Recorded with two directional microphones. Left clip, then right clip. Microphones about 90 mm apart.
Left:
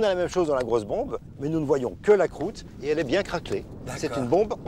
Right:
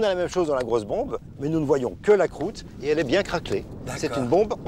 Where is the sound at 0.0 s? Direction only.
20° right (ahead or behind).